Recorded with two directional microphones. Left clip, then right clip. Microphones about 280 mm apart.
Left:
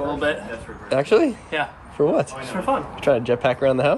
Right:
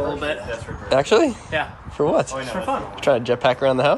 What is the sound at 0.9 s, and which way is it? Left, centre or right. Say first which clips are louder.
Speech: right 1 dB; centre.